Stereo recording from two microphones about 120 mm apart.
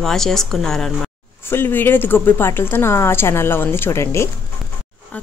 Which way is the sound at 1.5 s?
20° left (ahead or behind).